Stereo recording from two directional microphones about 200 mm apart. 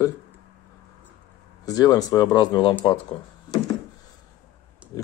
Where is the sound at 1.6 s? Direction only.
20° left (ahead or behind).